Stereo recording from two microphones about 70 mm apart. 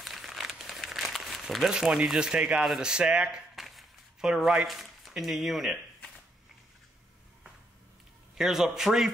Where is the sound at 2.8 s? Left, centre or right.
Centre.